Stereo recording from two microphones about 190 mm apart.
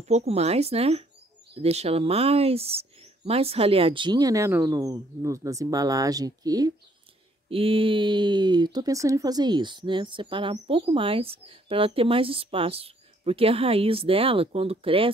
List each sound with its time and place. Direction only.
0.0 s speech: 35° right (ahead or behind)